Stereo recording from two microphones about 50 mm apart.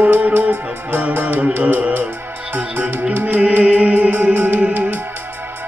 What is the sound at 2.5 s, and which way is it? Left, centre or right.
Music, right.